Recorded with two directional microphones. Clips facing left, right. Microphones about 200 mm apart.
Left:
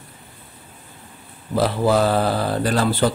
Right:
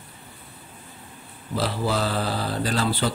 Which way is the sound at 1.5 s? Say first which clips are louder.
Left 7 dB; 55° left (ahead or behind).